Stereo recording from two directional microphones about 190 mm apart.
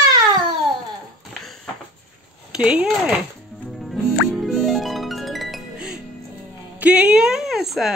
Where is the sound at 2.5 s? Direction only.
5° right (ahead or behind).